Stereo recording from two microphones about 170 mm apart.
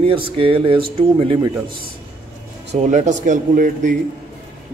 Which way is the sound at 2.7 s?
40° right (ahead or behind).